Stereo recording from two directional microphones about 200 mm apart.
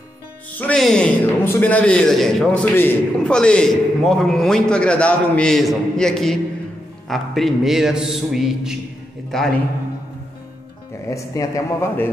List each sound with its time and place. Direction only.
0.6 s a man's voice: 5° left (ahead or behind)
11.1 s speech: 15° left (ahead or behind)